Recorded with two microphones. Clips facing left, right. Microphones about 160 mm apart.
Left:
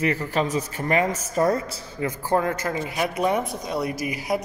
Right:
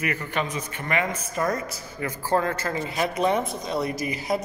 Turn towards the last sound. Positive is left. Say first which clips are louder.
# left 1 dB
turn(degrees=10)  # may be behind; listen again after turning